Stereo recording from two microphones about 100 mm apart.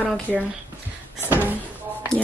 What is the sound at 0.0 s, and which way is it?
Speech, 15° right (ahead or behind).